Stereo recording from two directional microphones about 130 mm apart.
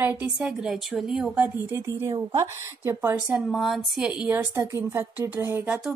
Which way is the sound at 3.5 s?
Centre (ahead or behind).